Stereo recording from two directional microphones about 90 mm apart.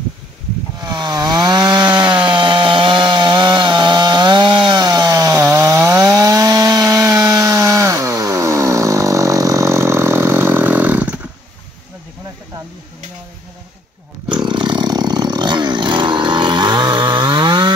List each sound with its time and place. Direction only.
0.7 s chainsaw: 50° right (ahead or behind)
5.5 s wood: 35° right (ahead or behind); by 11.1 s 20° right (ahead or behind)
14.3 s a sound: 60° right (ahead or behind)